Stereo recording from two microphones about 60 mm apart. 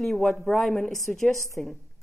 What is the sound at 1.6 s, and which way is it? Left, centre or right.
Speech, left.